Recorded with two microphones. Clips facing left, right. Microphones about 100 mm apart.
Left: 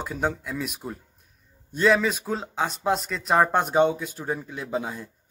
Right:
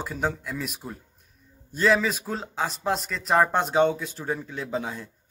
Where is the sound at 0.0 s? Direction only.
Centre (ahead or behind).